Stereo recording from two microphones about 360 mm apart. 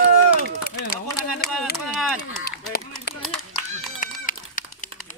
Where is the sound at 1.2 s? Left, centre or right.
Left.